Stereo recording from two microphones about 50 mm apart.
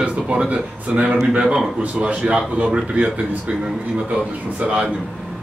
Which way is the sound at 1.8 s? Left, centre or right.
Right.